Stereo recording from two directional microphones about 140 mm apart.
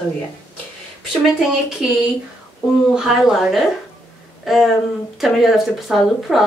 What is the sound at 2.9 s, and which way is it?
Speech, 5° right (ahead or behind).